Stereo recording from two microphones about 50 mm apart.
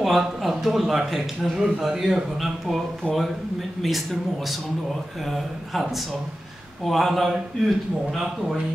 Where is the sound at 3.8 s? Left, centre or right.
Centre.